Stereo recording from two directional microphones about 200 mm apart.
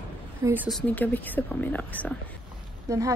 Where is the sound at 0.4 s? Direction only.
10° right (ahead or behind).